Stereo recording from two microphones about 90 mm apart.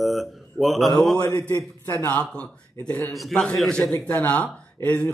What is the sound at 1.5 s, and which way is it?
Speech, 45° left (ahead or behind).